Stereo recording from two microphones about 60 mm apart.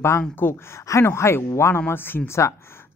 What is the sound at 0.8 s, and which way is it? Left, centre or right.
Speech, left.